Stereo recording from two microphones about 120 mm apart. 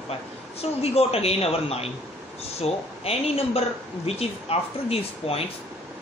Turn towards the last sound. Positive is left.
turn(degrees=55)  # may be behind; listen again after turning